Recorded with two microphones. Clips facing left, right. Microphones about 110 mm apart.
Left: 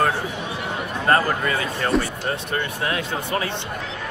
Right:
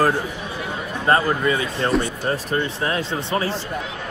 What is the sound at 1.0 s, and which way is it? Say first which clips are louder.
Speech: right 2 dB; 25° right (ahead or behind).